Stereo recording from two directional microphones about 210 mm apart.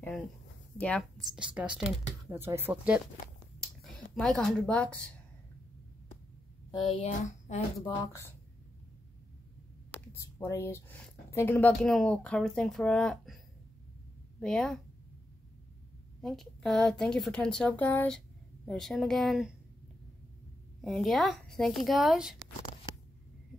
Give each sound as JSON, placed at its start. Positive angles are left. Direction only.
{"t": 0.7, "sound": "speech", "side_deg": 5}
{"t": 7.0, "sound": "speech", "side_deg": 35}
{"t": 10.4, "sound": "speech", "side_deg": 10}
{"t": 14.4, "sound": "speech", "side_deg": 5}
{"t": 16.2, "sound": "speech", "side_deg": 0}
{"t": 20.8, "sound": "speech", "side_deg": 0}